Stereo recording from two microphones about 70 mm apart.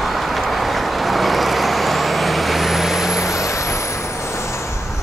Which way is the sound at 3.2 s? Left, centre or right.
Left.